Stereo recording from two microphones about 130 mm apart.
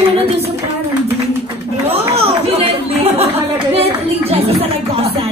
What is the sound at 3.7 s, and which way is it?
Music, 50° right (ahead or behind).